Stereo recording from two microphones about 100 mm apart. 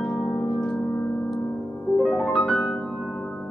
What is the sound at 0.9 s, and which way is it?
Music, 15° left (ahead or behind).